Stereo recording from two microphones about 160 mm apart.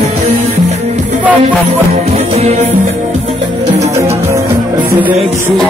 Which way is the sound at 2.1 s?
40° right (ahead or behind).